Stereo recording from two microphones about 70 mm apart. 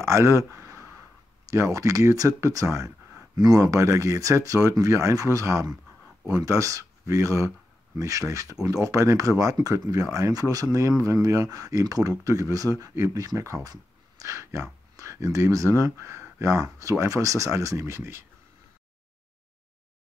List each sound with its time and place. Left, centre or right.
0.0 s a sound: right
1.5 s speech: right
3.3 s speech: right
3.6 s speech: right